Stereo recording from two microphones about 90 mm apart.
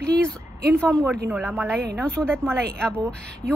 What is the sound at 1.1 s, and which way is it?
Speech, 20° right (ahead or behind).